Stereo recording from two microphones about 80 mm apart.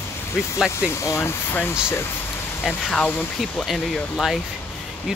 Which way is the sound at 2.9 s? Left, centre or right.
Centre.